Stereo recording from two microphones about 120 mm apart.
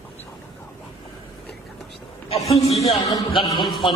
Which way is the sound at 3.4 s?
45° left (ahead or behind).